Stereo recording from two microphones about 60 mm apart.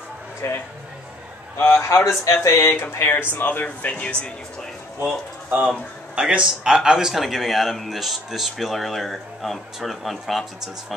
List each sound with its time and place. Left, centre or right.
0.4 s speech: left; by 4.3 s centre
5.7 s a man's voice: centre